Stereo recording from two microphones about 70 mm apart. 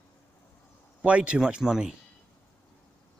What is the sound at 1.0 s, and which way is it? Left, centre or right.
Speech, centre.